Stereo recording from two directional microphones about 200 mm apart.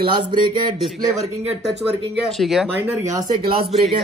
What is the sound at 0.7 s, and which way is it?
Speech, centre (ahead or behind).